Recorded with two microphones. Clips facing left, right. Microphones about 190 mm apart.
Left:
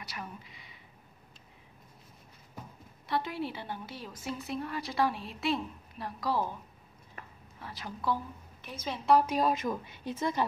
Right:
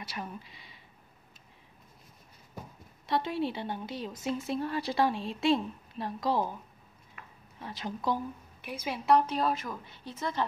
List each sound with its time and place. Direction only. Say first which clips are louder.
0.0 s a woman's voice: right 3 dB; 30° right (ahead or behind)
3.1 s a woman's voice: right 3 dB; 25° right (ahead or behind)
7.6 s a woman's voice: right 2 dB; 20° right (ahead or behind)
9.1 s a woman's voice: left 1 dB; 10° left (ahead or behind)